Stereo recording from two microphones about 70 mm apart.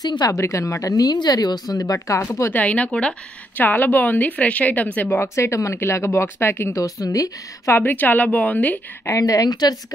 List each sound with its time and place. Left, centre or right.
0.0 s a woman's voice: left
0.3 s speech: left
2.5 s a woman's voice: left
3.5 s a woman's voice: left
5.3 s speech: left
6.8 s a woman's voice: left
7.7 s a woman's voice: left
9.0 s speech: left